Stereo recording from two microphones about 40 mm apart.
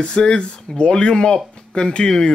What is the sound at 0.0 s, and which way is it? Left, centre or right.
A man's voice, left.